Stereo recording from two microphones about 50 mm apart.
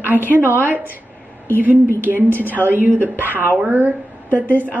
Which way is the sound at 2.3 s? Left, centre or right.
Left.